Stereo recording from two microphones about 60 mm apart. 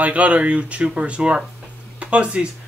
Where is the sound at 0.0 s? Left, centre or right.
Right.